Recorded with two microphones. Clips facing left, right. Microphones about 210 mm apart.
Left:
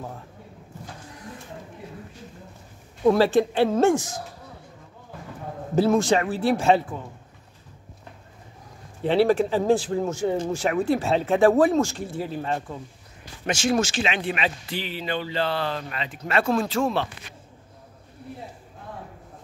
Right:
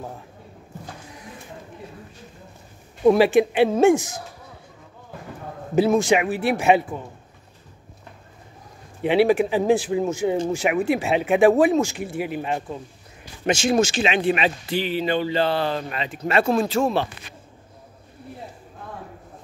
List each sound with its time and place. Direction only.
3.0 s speech: 15° right (ahead or behind)
5.8 s speech: 15° right (ahead or behind)
9.0 s speech: 15° right (ahead or behind)
13.7 s speech: 15° right (ahead or behind)
16.6 s speech: 10° right (ahead or behind)